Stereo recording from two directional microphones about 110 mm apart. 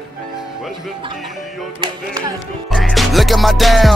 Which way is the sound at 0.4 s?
Centre (ahead or behind).